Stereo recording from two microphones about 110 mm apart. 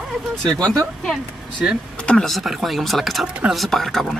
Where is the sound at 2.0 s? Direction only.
5° left (ahead or behind).